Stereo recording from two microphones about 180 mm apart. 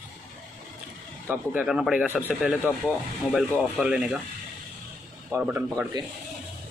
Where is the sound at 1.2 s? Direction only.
5° right (ahead or behind).